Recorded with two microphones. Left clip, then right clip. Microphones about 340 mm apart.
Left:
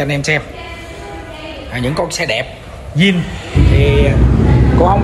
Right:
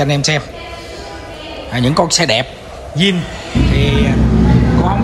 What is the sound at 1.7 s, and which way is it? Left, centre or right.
A man's voice, centre.